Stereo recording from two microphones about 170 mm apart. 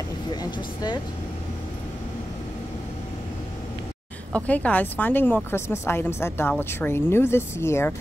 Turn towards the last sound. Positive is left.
turn(degrees=15)  # may be behind; listen again after turning